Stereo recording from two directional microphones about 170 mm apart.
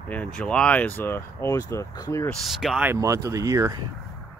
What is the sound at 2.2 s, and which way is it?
Speech, centre (ahead or behind).